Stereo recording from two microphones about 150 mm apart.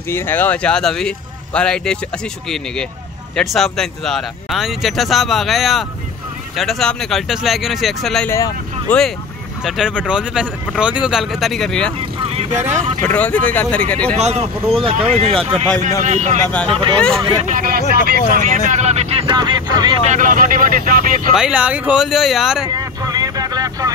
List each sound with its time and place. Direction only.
0.1 s speech: 15° left (ahead or behind)
3.3 s speech: 5° left (ahead or behind)
12.2 s vehicle: 40° right (ahead or behind)
13.0 s speech: 10° left (ahead or behind)
14.1 s speech: 45° right (ahead or behind)
16.4 s speech: 5° left (ahead or behind)
17.4 s speech: 60° right (ahead or behind); by 20.0 s 30° right (ahead or behind)
20.1 s speech: 60° right (ahead or behind)
21.4 s speech: 5° right (ahead or behind)
22.8 s vehicle: 25° right (ahead or behind)